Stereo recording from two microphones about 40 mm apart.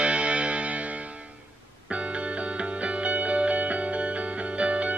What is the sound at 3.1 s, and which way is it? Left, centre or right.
Music, right.